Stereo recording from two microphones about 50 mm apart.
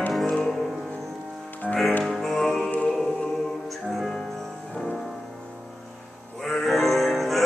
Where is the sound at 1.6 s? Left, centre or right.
Right.